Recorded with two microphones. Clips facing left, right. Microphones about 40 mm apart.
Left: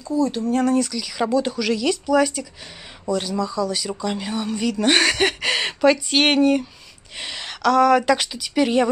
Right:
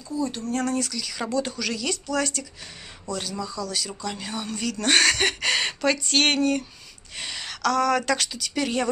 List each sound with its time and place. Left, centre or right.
0.3 s speech: centre
3.6 s speech: centre